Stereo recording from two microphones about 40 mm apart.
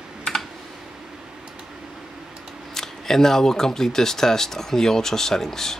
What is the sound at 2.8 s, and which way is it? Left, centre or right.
Speech, centre.